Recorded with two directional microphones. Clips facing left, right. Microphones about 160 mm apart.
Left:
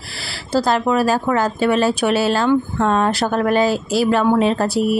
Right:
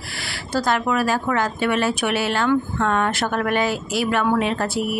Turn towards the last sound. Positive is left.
turn(degrees=35)  # may be behind; listen again after turning